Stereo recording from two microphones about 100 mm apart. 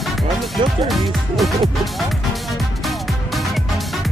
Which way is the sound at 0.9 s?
Centre (ahead or behind).